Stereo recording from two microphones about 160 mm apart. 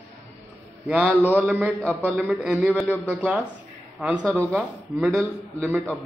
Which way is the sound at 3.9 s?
5° right (ahead or behind).